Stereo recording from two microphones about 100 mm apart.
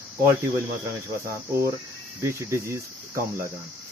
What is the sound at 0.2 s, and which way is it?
Speech, 30° right (ahead or behind).